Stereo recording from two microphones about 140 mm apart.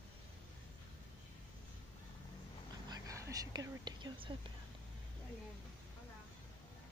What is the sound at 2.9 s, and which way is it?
Speech, 25° right (ahead or behind).